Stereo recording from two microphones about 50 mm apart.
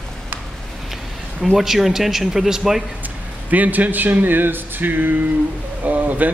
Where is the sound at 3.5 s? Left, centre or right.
Right.